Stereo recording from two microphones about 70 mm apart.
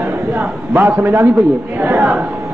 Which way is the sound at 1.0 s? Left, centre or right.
Right.